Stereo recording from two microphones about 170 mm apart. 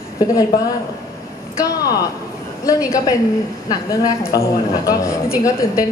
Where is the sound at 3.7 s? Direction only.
20° left (ahead or behind).